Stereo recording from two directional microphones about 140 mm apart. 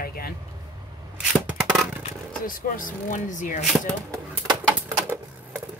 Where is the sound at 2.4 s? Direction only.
75° left (ahead or behind).